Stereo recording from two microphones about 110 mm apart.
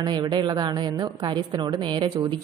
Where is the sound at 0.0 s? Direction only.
40° right (ahead or behind).